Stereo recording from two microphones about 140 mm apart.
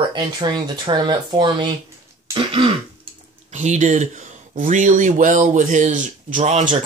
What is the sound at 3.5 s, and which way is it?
Speech, 55° right (ahead or behind).